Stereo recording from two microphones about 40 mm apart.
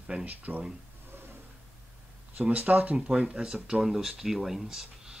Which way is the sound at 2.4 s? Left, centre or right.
Right.